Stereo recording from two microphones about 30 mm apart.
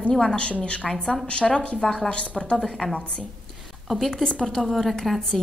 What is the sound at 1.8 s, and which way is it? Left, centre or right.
Speech, centre.